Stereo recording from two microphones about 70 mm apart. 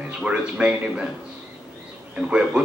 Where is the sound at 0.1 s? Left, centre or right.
Centre.